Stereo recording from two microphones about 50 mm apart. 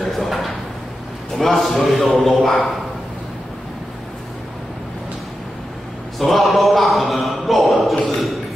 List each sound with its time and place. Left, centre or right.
0.0 s drawer open or close: centre
1.3 s a man's voice: centre
6.1 s a man's voice: centre